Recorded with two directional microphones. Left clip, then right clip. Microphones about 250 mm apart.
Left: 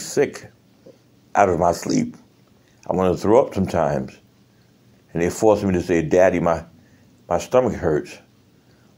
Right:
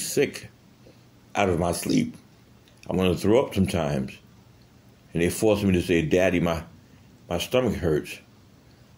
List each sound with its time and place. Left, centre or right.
0.0 s speech: centre